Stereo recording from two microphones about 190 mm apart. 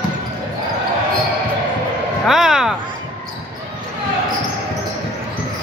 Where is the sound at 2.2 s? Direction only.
Centre (ahead or behind).